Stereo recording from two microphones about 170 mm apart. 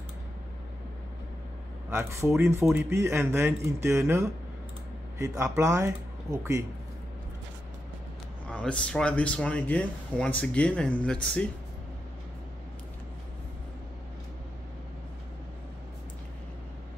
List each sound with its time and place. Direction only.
1.9 s a man's voice: 15° right (ahead or behind)
5.2 s a man's voice: 15° right (ahead or behind)
8.5 s speech: 5° left (ahead or behind)